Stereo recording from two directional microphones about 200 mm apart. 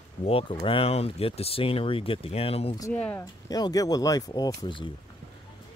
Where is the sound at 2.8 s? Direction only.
10° left (ahead or behind).